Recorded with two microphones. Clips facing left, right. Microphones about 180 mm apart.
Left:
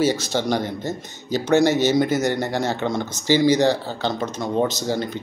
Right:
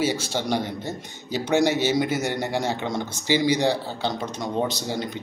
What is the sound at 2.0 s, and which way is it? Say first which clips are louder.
Speech: left 5 dB; 40° left (ahead or behind).